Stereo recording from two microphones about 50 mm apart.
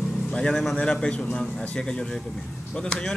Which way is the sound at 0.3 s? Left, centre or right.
Centre.